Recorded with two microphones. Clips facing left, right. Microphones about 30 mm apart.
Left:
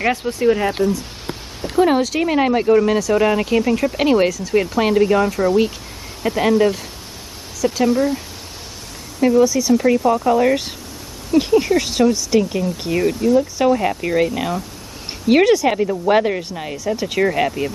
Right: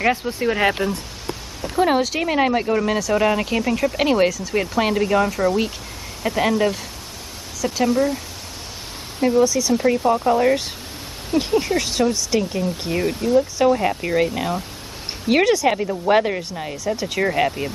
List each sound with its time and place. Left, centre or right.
0.0 s speech: centre
0.3 s speech: centre
0.8 s speech: right
1.8 s speech: centre
9.4 s speech: centre